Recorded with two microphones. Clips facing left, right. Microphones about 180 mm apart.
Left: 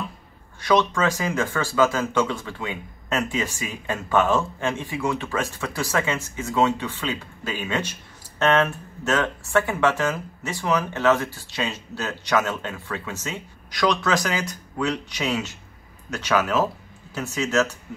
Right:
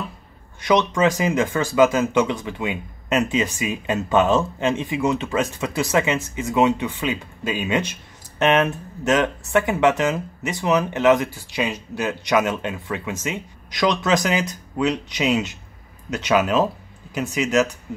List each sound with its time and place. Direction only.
0.6 s speech: 20° right (ahead or behind)